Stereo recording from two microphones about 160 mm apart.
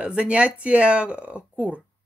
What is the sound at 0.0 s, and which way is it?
Speech, 5° right (ahead or behind).